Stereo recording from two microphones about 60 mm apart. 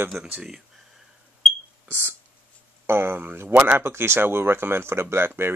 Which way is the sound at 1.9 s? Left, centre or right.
Right.